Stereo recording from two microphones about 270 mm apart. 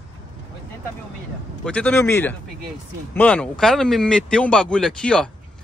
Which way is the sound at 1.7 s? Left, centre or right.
Centre.